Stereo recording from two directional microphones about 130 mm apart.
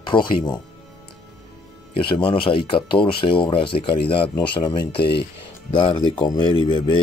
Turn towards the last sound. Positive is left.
turn(degrees=40)  # may be behind; listen again after turning